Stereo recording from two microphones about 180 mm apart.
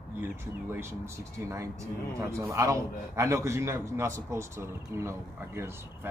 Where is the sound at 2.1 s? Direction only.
15° right (ahead or behind).